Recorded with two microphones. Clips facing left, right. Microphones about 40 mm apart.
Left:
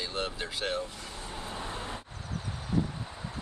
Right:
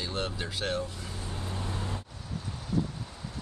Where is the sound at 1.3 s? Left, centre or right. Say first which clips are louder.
Even; centre.